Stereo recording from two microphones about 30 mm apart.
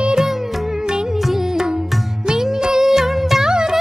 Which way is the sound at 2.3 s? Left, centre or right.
Right.